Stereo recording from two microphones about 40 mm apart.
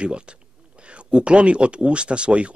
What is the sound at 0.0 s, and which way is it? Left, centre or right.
Speech, right.